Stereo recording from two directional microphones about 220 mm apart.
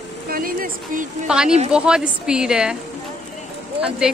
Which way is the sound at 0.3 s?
40° right (ahead or behind).